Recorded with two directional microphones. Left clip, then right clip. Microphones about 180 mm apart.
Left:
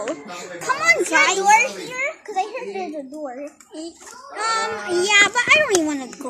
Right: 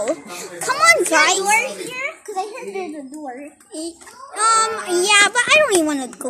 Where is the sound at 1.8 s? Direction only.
Centre (ahead or behind).